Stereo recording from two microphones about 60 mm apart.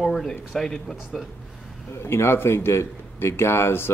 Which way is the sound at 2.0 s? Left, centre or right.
Left.